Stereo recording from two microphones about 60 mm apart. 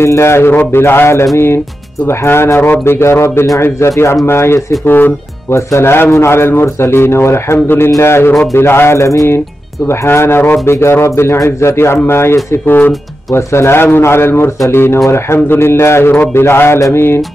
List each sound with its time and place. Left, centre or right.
0.0 s a man's voice: left
5.5 s a man's voice: left
10.6 s a man's voice: left
13.5 s a man's voice: left